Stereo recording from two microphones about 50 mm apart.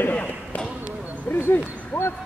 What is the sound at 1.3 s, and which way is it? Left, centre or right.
Speech, left.